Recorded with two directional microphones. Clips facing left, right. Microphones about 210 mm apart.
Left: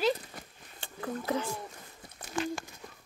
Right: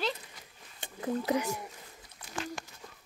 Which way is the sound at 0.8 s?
20° right (ahead or behind).